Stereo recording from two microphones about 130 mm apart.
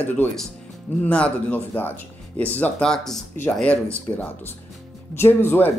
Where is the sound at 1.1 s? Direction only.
10° left (ahead or behind).